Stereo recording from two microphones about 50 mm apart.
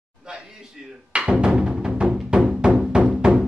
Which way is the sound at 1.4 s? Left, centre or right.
Centre.